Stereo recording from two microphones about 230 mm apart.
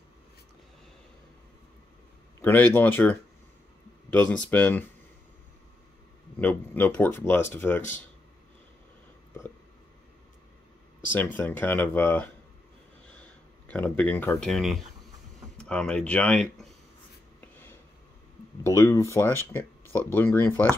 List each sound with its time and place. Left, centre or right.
2.4 s speech: centre
6.4 s speech: centre
11.1 s speech: centre
18.6 s speech: centre